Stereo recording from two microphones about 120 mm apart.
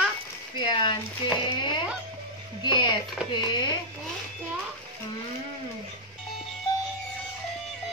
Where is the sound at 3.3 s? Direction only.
40° left (ahead or behind).